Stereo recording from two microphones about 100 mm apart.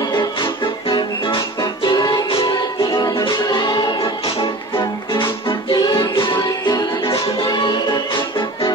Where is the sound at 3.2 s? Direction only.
45° left (ahead or behind).